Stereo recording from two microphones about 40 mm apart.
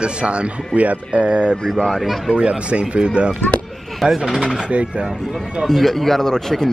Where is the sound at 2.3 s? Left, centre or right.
Right.